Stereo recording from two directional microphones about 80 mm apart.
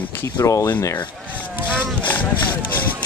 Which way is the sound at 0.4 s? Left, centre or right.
Left.